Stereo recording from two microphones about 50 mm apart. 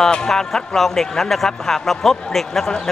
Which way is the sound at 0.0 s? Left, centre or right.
Centre.